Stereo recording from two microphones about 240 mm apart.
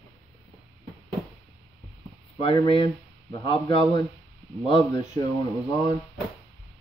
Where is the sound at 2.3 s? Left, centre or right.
Left.